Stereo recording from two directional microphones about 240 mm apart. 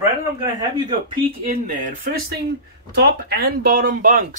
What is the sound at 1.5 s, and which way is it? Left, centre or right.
Speech, right.